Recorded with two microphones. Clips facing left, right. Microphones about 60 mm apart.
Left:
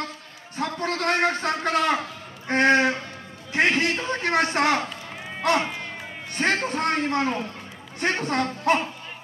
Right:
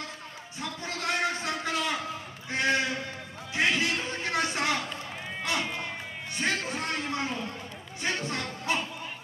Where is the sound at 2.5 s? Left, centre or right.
Left.